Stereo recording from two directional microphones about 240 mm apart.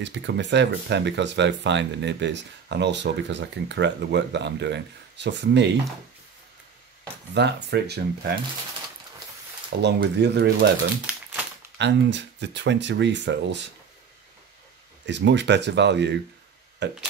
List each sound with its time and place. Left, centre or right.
0.0 s speech: right
7.3 s speech: right
9.8 s speech: right
11.8 s speech: right
15.0 s speech: right